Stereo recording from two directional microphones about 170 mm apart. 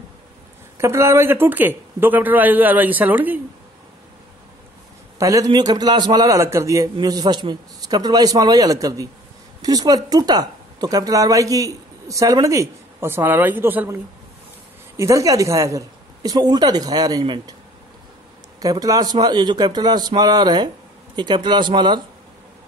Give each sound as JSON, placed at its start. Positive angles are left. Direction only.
{"t": 0.7, "sound": "speech", "side_deg": -15}
{"t": 5.2, "sound": "a woman's voice", "side_deg": -20}
{"t": 15.0, "sound": "a woman's voice", "side_deg": -20}
{"t": 18.6, "sound": "a woman's voice", "side_deg": -20}